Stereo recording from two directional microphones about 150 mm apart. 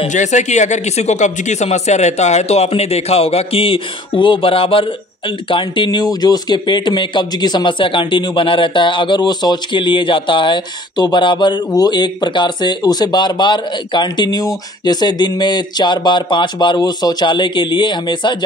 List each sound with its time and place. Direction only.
0.0 s speech: 50° left (ahead or behind); by 18.4 s 30° left (ahead or behind)